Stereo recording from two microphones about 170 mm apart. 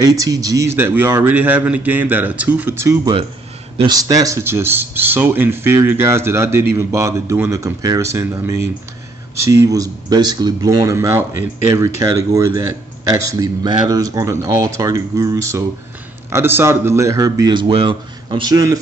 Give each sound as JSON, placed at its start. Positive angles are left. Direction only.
{"t": 0.0, "sound": "a man's voice", "side_deg": -20}